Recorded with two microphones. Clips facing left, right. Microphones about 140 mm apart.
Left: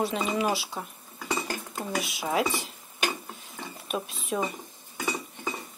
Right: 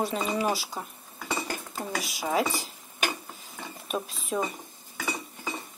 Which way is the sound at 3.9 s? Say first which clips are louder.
Even; centre (ahead or behind).